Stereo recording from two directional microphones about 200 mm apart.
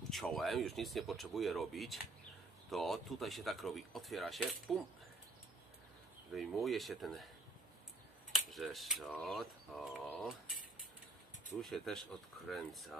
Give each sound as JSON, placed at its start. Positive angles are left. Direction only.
{"t": 0.1, "sound": "speech", "side_deg": 0}
{"t": 6.3, "sound": "speech", "side_deg": 0}
{"t": 8.3, "sound": "speech", "side_deg": 0}
{"t": 11.6, "sound": "speech", "side_deg": 0}